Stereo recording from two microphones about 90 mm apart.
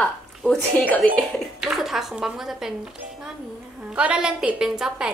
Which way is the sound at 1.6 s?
5° right (ahead or behind).